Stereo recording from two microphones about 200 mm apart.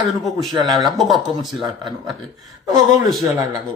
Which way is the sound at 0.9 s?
Centre (ahead or behind).